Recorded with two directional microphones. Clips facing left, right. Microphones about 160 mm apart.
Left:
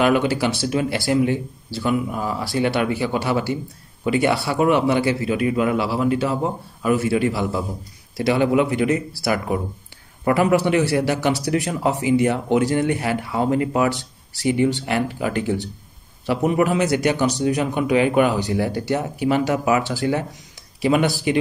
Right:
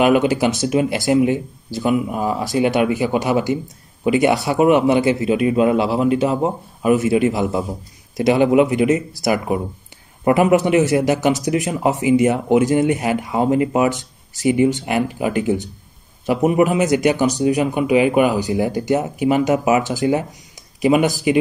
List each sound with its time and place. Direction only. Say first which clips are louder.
0.0 s a man's voice: right 3 dB; 15° right (ahead or behind)